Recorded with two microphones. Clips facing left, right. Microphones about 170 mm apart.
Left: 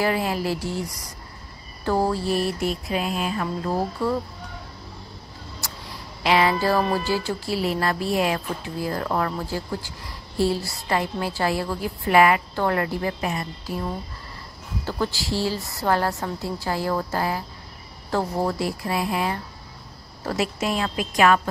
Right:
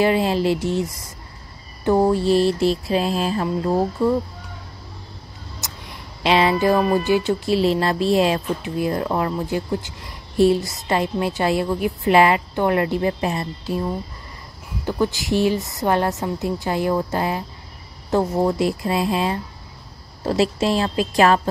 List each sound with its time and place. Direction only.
0.0 s music: 25° right (ahead or behind)
5.6 s music: 20° right (ahead or behind)
14.9 s music: 20° right (ahead or behind)